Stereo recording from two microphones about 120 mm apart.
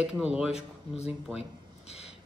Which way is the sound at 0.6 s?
60° left (ahead or behind).